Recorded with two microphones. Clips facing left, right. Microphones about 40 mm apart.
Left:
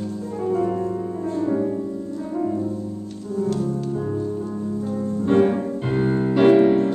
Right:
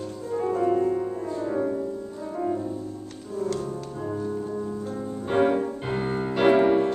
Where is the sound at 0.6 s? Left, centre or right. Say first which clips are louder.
Right 3 dB; centre.